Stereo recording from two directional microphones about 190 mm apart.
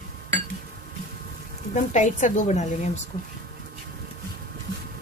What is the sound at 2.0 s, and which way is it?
Speech, 40° left (ahead or behind).